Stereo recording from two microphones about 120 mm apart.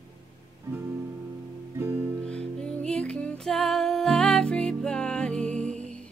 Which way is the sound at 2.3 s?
10° left (ahead or behind).